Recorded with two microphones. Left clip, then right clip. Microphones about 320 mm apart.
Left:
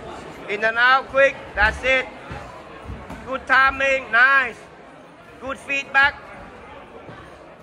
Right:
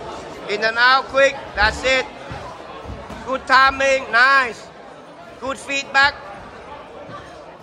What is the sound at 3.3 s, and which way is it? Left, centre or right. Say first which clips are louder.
A man's voice: right 3 dB; centre.